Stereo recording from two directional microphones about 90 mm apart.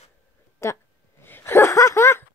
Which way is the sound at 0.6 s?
35° left (ahead or behind).